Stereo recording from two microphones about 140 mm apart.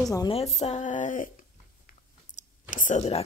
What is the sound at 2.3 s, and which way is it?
Clicking, 65° left (ahead or behind).